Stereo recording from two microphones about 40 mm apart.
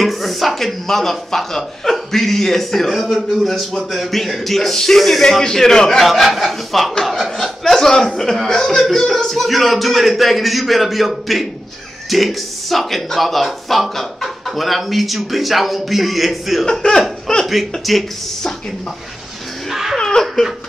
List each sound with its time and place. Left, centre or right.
0.0 s speech: centre
2.9 s speech: centre
16.8 s laughter: left
17.5 s speech: centre
19.7 s a sound: centre
20.0 s laughter: centre